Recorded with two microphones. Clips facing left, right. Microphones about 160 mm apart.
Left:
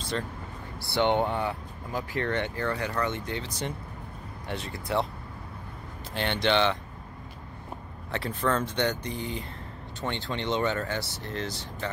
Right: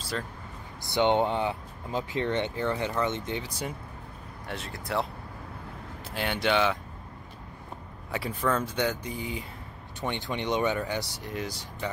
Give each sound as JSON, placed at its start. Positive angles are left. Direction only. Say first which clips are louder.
{"t": 0.7, "sound": "speech", "louder": "right 1 dB", "side_deg": -15}
{"t": 6.1, "sound": "speech", "louder": "left 1 dB", "side_deg": -5}
{"t": 8.1, "sound": "speech", "louder": "even", "side_deg": -10}